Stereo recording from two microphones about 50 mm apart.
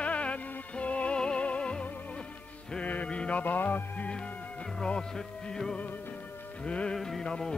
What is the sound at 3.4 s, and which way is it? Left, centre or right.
Music, left.